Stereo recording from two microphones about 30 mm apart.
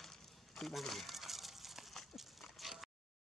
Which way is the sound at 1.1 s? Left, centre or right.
Centre.